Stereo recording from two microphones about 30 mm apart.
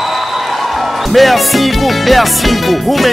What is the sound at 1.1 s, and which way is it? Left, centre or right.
Music, centre.